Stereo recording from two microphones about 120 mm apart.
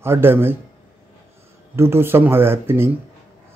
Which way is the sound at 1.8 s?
20° right (ahead or behind).